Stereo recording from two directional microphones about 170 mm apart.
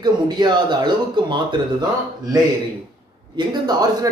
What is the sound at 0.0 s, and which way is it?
Speech, 25° right (ahead or behind).